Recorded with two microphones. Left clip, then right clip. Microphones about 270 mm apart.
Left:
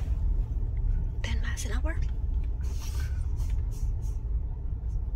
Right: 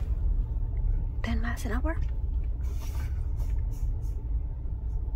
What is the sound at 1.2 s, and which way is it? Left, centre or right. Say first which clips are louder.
Speech: right 3 dB; centre.